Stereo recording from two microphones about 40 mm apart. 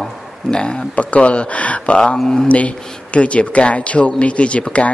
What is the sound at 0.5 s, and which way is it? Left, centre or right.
Speech, left.